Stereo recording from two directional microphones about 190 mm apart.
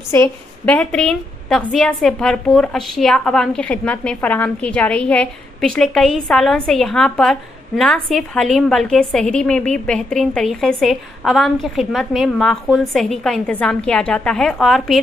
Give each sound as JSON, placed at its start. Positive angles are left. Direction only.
{"t": 0.1, "sound": "a woman's voice", "side_deg": 10}